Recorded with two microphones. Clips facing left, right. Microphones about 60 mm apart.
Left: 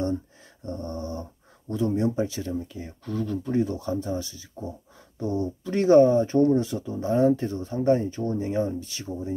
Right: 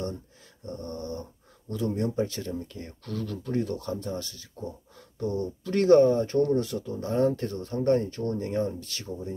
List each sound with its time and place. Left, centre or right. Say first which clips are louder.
0.7 s dog: left 3 dB; left
1.7 s speech: left 4 dB; left